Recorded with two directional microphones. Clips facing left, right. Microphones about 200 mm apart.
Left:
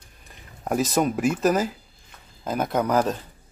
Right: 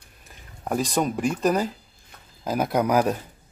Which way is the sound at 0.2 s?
Centre (ahead or behind).